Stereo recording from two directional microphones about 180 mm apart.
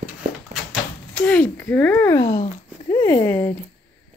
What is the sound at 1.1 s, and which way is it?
Speech, 5° left (ahead or behind).